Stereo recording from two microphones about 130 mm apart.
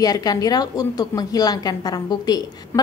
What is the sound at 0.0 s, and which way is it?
A woman's voice, 30° left (ahead or behind).